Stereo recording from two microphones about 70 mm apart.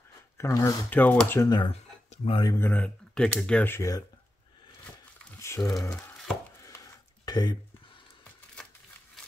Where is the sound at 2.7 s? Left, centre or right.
Centre.